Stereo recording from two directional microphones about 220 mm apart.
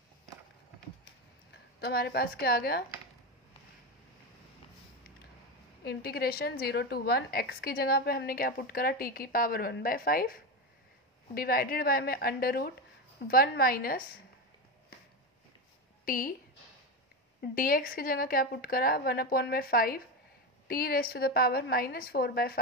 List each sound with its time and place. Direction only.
1.8 s a woman's voice: 45° left (ahead or behind)
5.9 s a woman's voice: 45° left (ahead or behind)
16.1 s speech: 40° left (ahead or behind)
17.4 s a woman's voice: 40° left (ahead or behind)